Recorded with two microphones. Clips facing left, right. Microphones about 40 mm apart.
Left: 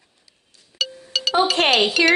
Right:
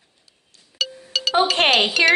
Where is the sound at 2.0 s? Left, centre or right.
Right.